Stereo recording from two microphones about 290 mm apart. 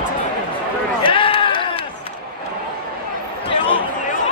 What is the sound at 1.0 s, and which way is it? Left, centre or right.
Run, centre.